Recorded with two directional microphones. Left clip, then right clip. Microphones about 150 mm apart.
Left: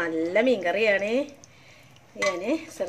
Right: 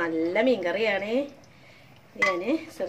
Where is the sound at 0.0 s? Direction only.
25° left (ahead or behind).